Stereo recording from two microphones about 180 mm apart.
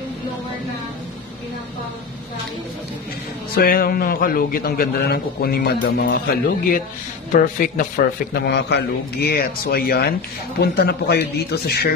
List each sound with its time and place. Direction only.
3.5 s a man's voice: 55° left (ahead or behind)
7.3 s a man's voice: 50° left (ahead or behind)